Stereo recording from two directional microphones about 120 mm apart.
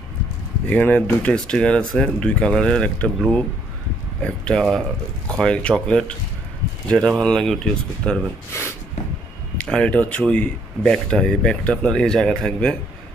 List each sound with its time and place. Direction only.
0.7 s speech: 15° left (ahead or behind)
8.5 s speech: 25° left (ahead or behind)
9.6 s speech: 10° left (ahead or behind)